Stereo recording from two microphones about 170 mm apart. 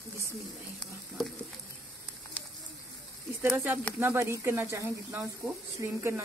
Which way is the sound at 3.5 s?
10° right (ahead or behind).